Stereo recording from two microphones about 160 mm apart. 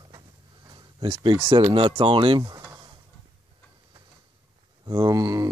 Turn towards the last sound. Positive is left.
turn(degrees=-20)  # may be behind; listen again after turning